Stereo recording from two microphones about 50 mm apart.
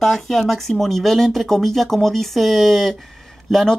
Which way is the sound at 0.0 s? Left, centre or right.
Centre.